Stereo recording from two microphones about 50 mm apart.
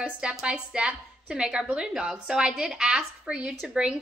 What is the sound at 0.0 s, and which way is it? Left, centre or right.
A woman's voice, centre.